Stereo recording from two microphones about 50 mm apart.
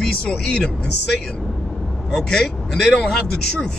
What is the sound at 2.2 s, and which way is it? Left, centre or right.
Speech, centre.